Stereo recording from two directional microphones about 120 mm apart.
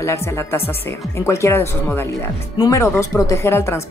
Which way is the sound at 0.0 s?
25° left (ahead or behind).